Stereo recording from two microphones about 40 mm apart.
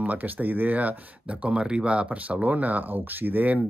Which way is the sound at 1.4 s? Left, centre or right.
Right.